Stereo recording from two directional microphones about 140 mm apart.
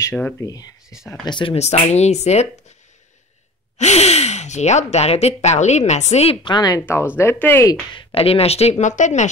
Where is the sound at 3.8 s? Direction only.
55° left (ahead or behind); by 7.8 s 20° left (ahead or behind).